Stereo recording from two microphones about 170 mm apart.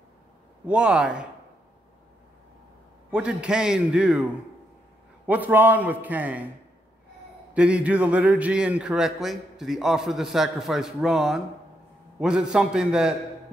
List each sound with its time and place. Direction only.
0.7 s a man's voice: 5° right (ahead or behind)
3.1 s a man's voice: 5° right (ahead or behind)
7.5 s a man's voice: 5° right (ahead or behind)